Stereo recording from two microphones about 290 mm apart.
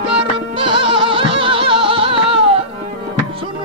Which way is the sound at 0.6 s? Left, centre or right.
Centre.